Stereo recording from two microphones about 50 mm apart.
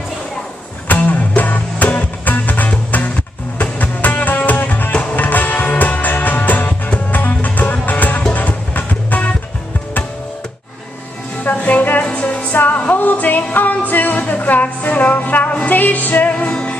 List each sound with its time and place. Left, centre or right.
0.8 s music: left
11.5 s music: left